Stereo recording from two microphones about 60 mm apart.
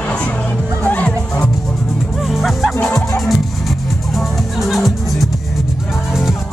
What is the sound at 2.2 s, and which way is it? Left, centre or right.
Music, centre.